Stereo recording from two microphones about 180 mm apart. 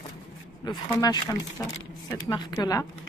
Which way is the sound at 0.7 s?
25° left (ahead or behind).